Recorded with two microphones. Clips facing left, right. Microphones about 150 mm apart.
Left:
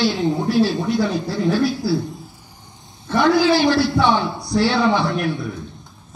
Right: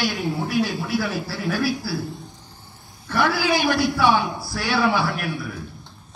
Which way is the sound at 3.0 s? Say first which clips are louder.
Left 6 dB; 20° left (ahead or behind).